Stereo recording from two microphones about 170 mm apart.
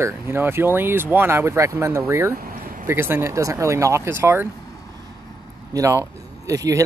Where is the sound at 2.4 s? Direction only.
55° right (ahead or behind).